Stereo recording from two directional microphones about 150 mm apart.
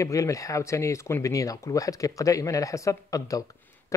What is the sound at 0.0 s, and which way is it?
Speech, 20° left (ahead or behind).